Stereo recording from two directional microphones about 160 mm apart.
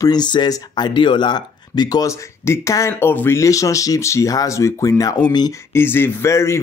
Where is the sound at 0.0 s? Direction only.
25° left (ahead or behind).